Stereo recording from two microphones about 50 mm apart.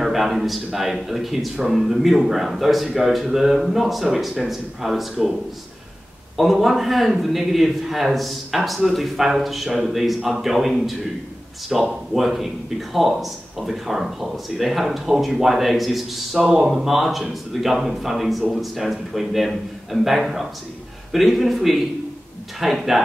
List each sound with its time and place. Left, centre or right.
0.0 s a man's voice: centre
6.3 s a man's voice: centre
16.3 s speech: centre
16.6 s a man's voice: centre